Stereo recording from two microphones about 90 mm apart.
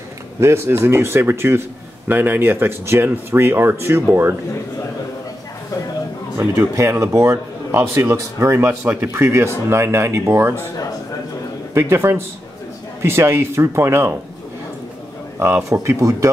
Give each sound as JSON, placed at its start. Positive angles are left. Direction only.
{"t": 0.4, "sound": "speech", "side_deg": -30}
{"t": 6.3, "sound": "speech", "side_deg": -30}
{"t": 11.7, "sound": "speech", "side_deg": -30}
{"t": 15.3, "sound": "speech", "side_deg": -30}